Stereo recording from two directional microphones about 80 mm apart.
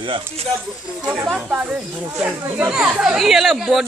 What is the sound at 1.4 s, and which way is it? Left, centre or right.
Speech, right.